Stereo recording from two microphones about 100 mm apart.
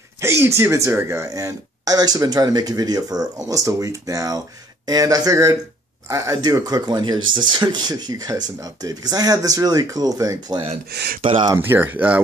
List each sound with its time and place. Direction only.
0.2 s speech: 25° right (ahead or behind)
11.1 s speech: 60° right (ahead or behind)
11.5 s speech: 20° right (ahead or behind)